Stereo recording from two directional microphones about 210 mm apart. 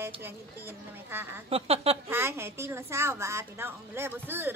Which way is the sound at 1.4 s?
30° right (ahead or behind).